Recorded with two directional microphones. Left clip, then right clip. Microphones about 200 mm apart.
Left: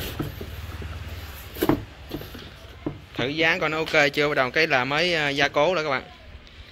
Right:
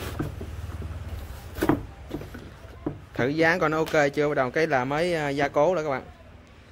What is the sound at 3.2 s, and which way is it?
Speech, 30° right (ahead or behind).